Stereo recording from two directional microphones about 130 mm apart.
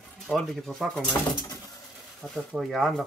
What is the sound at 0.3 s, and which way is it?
Speech, centre (ahead or behind).